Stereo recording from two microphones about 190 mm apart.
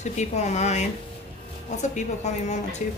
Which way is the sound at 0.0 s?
40° left (ahead or behind).